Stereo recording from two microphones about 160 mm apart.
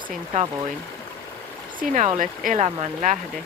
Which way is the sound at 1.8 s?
50° right (ahead or behind).